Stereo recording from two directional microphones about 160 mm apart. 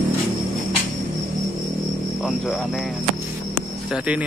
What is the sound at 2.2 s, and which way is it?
Speech, 5° right (ahead or behind).